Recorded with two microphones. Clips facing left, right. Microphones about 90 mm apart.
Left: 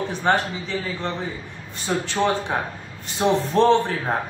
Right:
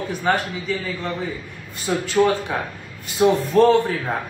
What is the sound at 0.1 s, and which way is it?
Speech, 35° left (ahead or behind).